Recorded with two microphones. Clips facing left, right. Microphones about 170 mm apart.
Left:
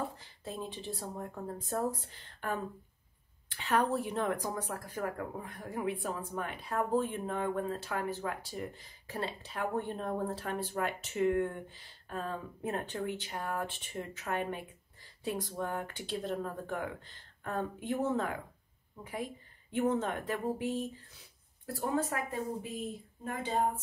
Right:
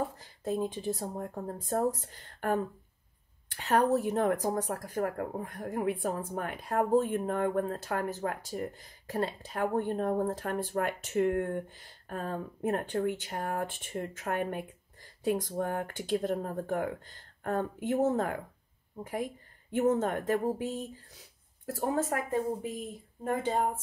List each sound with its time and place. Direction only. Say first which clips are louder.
0.0 s speech: right 5 dB; 45° right (ahead or behind)
19.7 s speech: right 4 dB; 45° right (ahead or behind)